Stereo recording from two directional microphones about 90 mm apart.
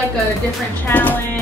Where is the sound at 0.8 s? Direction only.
20° left (ahead or behind).